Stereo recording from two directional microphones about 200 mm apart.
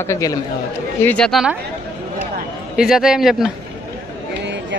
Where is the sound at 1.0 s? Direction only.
5° left (ahead or behind).